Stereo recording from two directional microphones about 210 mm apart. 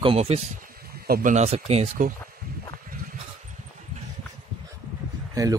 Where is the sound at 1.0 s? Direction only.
40° right (ahead or behind).